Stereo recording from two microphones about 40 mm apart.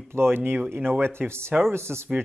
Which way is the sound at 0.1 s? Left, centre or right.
Right.